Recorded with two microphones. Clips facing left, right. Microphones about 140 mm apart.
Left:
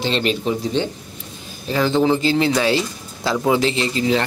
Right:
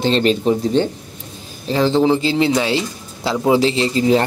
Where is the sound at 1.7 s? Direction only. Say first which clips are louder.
Right 2 dB; 30° right (ahead or behind).